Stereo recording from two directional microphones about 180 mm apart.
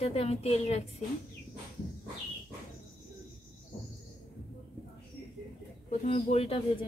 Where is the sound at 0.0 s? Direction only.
35° left (ahead or behind).